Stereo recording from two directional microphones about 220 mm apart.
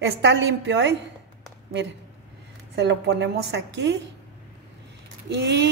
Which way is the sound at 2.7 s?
50° right (ahead or behind).